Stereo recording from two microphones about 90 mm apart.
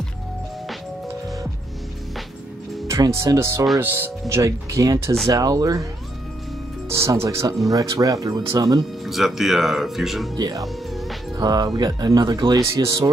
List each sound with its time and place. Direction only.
2.9 s speech: 35° right (ahead or behind)
4.4 s speech: 40° right (ahead or behind)
5.3 s speech: 45° right (ahead or behind)
6.9 s music: 30° right (ahead or behind)
7.2 s speech: 40° right (ahead or behind)
9.0 s speech: centre (ahead or behind)
10.3 s speech: 50° right (ahead or behind)